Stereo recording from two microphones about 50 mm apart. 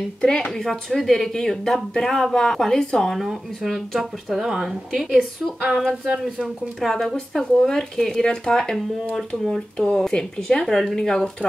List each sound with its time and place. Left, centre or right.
0.2 s speech: centre
3.6 s speech: centre
8.2 s speech: centre
9.8 s speech: centre